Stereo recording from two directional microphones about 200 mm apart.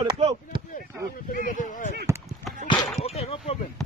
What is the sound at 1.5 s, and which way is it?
Speech, 40° left (ahead or behind).